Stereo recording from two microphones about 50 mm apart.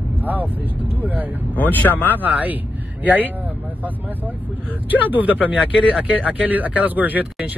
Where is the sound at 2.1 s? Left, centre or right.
Right.